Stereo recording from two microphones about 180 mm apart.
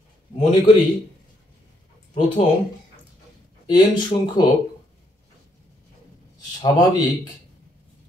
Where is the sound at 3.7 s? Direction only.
25° left (ahead or behind).